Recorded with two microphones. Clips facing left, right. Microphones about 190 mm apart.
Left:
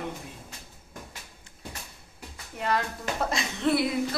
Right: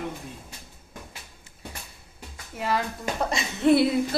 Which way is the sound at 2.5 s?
5° right (ahead or behind).